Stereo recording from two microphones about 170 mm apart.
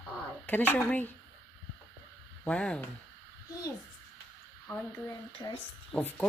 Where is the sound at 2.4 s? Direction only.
5° left (ahead or behind).